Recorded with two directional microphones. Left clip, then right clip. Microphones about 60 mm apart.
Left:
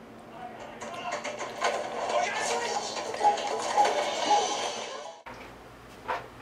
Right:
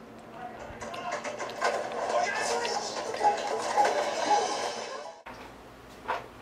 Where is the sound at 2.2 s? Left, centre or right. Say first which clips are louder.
Even; left.